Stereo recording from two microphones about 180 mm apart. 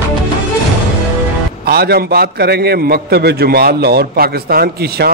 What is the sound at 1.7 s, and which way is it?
A man's voice, 60° right (ahead or behind).